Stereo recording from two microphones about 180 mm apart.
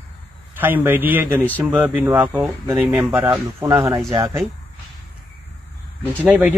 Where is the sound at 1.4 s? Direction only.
10° left (ahead or behind).